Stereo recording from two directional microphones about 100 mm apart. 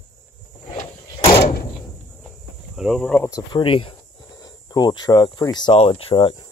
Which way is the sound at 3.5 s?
60° left (ahead or behind).